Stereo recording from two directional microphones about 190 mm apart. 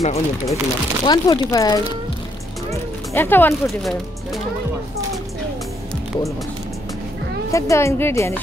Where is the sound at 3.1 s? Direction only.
10° left (ahead or behind).